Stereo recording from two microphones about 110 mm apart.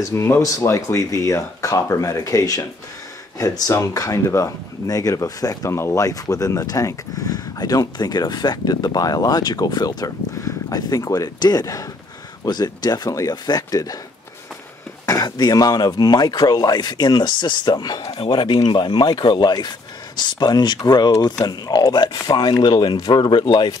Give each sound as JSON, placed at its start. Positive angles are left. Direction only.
{"t": 0.1, "sound": "speech", "side_deg": 25}
{"t": 15.0, "sound": "speech", "side_deg": 35}